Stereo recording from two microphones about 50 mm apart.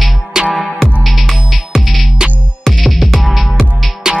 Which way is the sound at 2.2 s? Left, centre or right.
Centre.